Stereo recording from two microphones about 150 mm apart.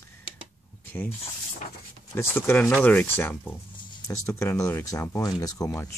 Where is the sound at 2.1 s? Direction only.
15° left (ahead or behind).